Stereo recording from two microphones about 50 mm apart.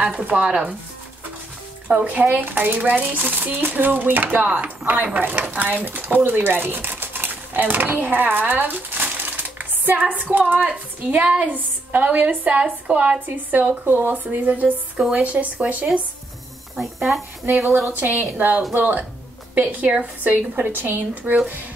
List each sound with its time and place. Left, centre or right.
0.0 s speech: right
1.9 s speech: right
13.5 s speech: right
16.7 s speech: centre
17.5 s speech: right
20.2 s speech: right